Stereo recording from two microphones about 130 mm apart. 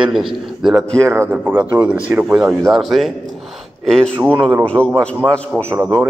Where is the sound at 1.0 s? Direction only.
20° right (ahead or behind); by 4.9 s 10° left (ahead or behind).